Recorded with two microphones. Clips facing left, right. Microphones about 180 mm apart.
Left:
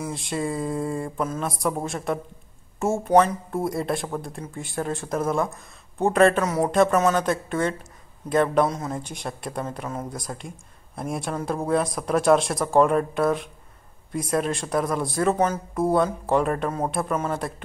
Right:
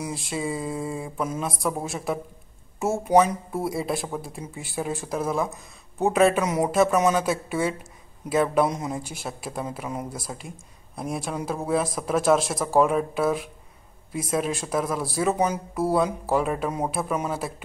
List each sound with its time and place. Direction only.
0.0 s speech: centre (ahead or behind)
8.6 s speech: 20° right (ahead or behind)
8.9 s speech: 5° right (ahead or behind)